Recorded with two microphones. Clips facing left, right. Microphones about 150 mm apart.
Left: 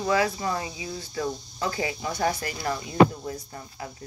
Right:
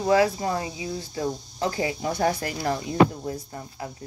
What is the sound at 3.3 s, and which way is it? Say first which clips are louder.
Speech: right 3 dB; 30° right (ahead or behind).